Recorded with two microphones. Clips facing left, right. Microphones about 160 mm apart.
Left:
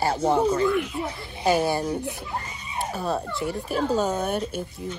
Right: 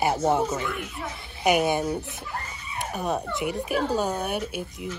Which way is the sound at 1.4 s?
20° right (ahead or behind).